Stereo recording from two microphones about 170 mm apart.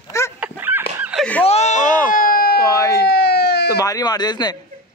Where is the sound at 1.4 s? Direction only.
40° left (ahead or behind); by 2.6 s 60° left (ahead or behind).